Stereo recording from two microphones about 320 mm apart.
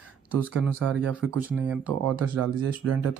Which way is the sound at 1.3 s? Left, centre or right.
Centre.